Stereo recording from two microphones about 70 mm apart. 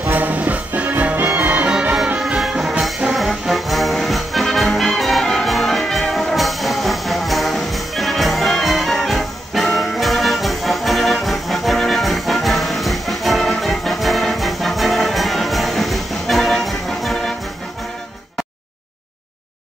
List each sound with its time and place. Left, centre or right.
0.0 s music: right; by 17.3 s centre